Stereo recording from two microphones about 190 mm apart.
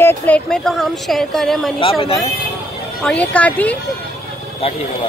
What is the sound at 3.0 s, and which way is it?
Speech, 5° left (ahead or behind).